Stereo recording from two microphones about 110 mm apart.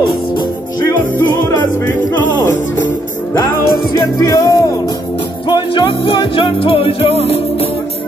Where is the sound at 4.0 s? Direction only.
30° left (ahead or behind).